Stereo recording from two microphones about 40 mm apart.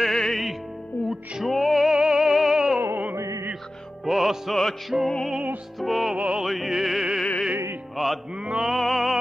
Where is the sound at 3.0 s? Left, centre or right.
Right.